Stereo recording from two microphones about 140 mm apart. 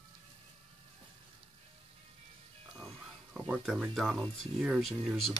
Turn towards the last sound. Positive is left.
turn(degrees=0)  # may be behind; listen again after turning